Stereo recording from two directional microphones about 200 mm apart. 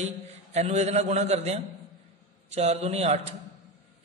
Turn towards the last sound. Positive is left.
turn(degrees=-35)  # may be behind; listen again after turning